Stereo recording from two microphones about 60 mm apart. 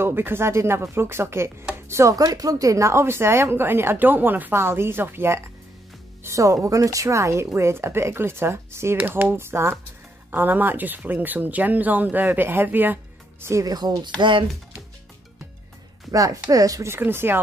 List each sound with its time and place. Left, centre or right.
0.0 s speech: right
2.1 s speech: right
6.2 s speech: right
10.3 s speech: right
13.5 s speech: right
16.1 s speech: right
17.0 s speech: right